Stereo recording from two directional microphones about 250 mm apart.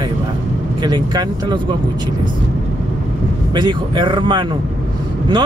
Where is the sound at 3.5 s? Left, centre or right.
Centre.